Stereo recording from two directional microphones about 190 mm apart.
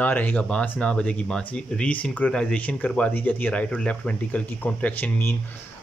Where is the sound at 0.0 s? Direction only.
10° left (ahead or behind).